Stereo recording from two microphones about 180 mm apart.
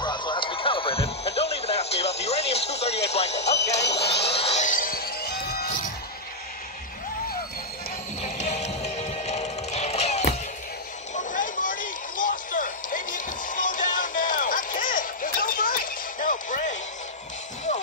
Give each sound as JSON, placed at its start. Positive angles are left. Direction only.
{"t": 0.0, "sound": "music", "side_deg": 25}
{"t": 3.5, "sound": "music", "side_deg": 70}
{"t": 4.0, "sound": "music", "side_deg": 35}
{"t": 8.2, "sound": "music", "side_deg": 40}
{"t": 11.1, "sound": "a sound", "side_deg": 50}